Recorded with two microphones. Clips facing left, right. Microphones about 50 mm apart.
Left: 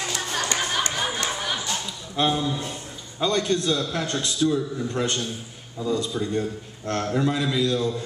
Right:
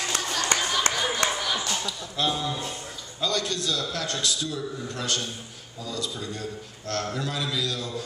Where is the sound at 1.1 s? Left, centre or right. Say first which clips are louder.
Right 1 dB; left.